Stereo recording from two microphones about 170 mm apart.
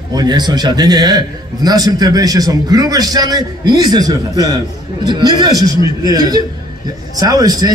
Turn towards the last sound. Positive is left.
turn(degrees=-20)  # may be behind; listen again after turning